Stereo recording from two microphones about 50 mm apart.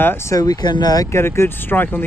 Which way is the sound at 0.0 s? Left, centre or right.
Left.